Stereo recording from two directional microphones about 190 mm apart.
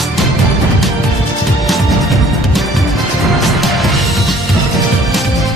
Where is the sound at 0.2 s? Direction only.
Centre (ahead or behind).